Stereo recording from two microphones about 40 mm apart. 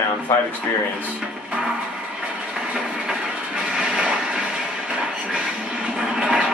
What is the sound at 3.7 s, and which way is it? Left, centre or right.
Vehicle, right.